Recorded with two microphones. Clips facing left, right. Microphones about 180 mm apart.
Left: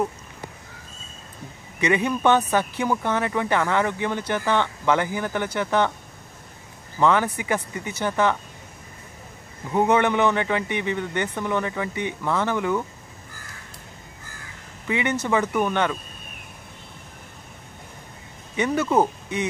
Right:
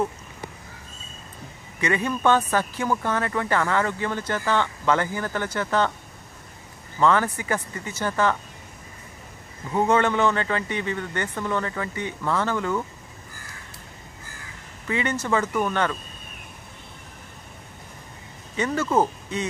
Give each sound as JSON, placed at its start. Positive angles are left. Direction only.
{"t": 1.8, "sound": "speech", "side_deg": 15}
{"t": 7.0, "sound": "speech", "side_deg": 15}
{"t": 9.7, "sound": "speech", "side_deg": 15}
{"t": 14.9, "sound": "speech", "side_deg": 15}
{"t": 18.6, "sound": "speech", "side_deg": 15}